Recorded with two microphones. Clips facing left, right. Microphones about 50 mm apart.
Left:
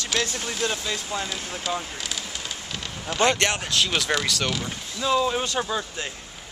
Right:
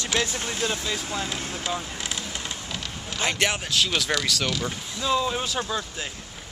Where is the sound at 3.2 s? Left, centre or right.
Centre.